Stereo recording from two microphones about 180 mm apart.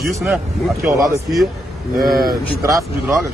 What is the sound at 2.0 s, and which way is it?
Speech, 55° right (ahead or behind).